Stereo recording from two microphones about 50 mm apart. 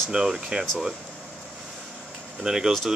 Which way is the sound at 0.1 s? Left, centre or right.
Centre.